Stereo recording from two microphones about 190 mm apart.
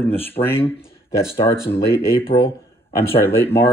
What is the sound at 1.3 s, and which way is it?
Speech, 30° left (ahead or behind).